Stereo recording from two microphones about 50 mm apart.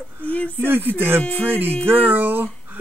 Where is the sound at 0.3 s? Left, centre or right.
Left.